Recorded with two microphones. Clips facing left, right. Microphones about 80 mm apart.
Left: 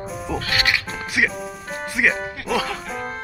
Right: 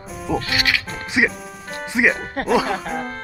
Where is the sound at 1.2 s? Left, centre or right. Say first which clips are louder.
Right 2 dB; centre.